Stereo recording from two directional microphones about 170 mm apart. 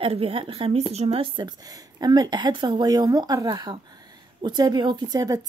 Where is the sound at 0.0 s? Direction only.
35° right (ahead or behind).